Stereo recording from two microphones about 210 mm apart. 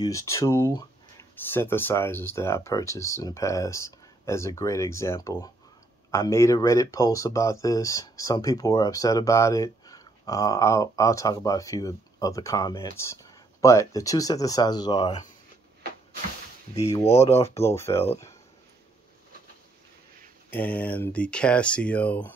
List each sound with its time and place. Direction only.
0.0 s speech: 15° left (ahead or behind)
17.0 s speech: 30° left (ahead or behind)
17.6 s speech: 10° left (ahead or behind)
20.5 s speech: 5° left (ahead or behind)